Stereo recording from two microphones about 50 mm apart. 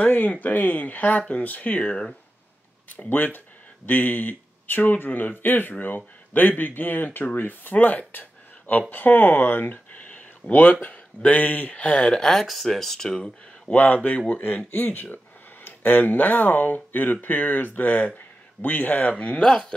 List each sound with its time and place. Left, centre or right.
0.0 s speech: left
2.9 s speech: left
8.1 s a sound: left
8.9 s speech: left
12.2 s speech: centre
13.7 s speech: left
19.4 s speech: centre